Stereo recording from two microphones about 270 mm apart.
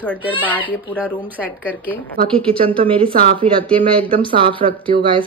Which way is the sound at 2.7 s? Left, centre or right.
Centre.